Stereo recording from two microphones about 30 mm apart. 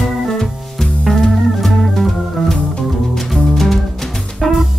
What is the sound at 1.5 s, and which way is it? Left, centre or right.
Music, centre.